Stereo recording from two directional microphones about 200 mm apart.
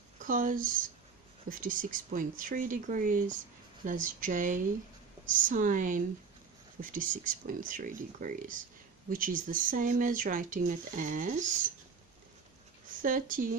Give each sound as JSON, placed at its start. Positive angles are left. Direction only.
{"t": 0.2, "sound": "speech", "side_deg": -40}
{"t": 13.0, "sound": "speech", "side_deg": -45}